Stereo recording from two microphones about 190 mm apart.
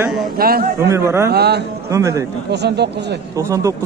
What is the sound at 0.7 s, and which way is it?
Speech, 15° right (ahead or behind).